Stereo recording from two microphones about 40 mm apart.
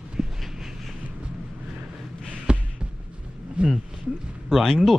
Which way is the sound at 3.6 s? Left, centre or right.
Right.